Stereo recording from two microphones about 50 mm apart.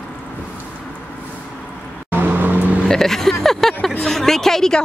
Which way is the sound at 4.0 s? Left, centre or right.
Centre.